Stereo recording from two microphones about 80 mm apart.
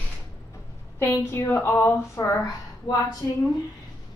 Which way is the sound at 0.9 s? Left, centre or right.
Left.